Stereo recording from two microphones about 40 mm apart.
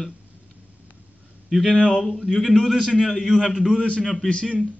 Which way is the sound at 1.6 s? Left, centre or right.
Left.